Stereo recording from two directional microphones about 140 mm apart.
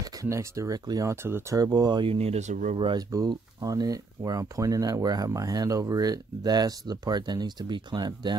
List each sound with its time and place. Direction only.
0.0 s speech: 20° right (ahead or behind)
2.1 s speech: 50° right (ahead or behind)
2.8 s speech: 30° right (ahead or behind)